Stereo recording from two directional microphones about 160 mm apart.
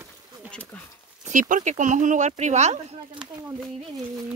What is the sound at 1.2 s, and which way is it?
Speech, 55° right (ahead or behind).